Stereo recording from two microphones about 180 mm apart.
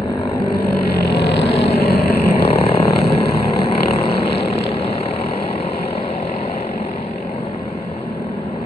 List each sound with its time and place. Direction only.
0.6 s vehicle: 60° left (ahead or behind)
1.4 s vehicle: 35° left (ahead or behind)
1.9 s vehicle: 60° left (ahead or behind)
2.6 s vehicle: 35° left (ahead or behind)